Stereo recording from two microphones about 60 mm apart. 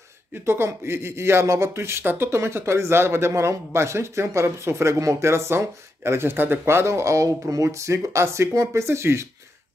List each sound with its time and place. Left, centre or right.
0.3 s speech: right